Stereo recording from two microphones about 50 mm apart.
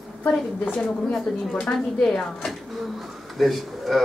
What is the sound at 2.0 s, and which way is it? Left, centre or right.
A woman's voice, centre.